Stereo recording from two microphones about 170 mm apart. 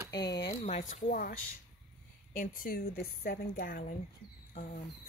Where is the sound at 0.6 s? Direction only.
40° left (ahead or behind).